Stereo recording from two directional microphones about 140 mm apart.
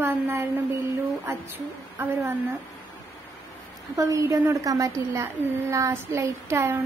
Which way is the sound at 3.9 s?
25° right (ahead or behind).